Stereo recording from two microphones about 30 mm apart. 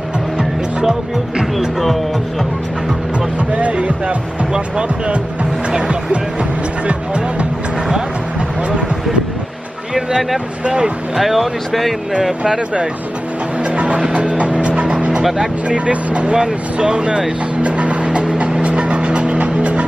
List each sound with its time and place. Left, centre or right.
0.8 s speech: centre
3.2 s speech: right
5.7 s speech: right
6.9 s speech: right
8.6 s speech: right
9.9 s speech: centre
10.6 s speech: right
11.1 s speech: centre
13.7 s music: right
14.1 s vehicle: right
15.7 s speech: right
16.7 s speech: right
17.6 s vehicle: right